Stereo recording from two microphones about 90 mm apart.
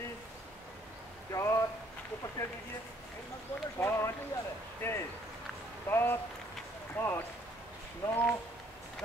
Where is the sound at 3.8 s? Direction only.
25° left (ahead or behind).